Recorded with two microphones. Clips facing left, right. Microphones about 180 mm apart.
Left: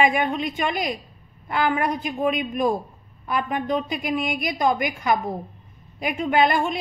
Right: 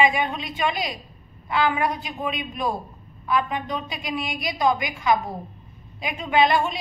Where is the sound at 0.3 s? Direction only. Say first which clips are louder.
Left 2 dB; 50° left (ahead or behind).